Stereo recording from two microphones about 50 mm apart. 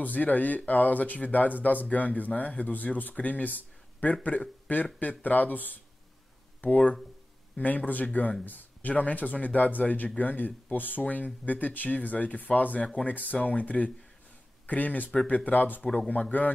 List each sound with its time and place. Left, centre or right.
0.0 s speech: left